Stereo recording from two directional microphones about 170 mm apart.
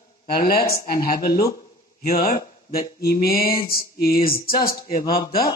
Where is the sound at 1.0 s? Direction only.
60° left (ahead or behind).